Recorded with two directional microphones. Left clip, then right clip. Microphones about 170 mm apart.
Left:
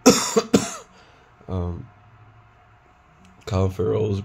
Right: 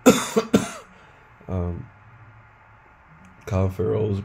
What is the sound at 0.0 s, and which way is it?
Cough, 20° left (ahead or behind).